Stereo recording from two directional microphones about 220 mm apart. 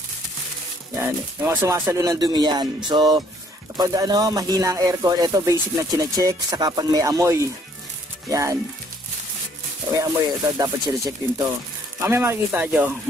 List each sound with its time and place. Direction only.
0.9 s speech: 10° right (ahead or behind)
2.9 s music: 20° right (ahead or behind)
3.7 s speech: 15° right (ahead or behind)
9.9 s speech: 15° right (ahead or behind)